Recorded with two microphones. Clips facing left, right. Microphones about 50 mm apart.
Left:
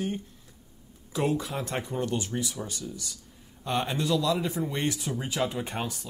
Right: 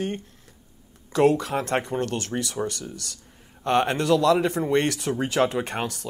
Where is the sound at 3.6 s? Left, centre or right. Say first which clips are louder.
Right 7 dB; right.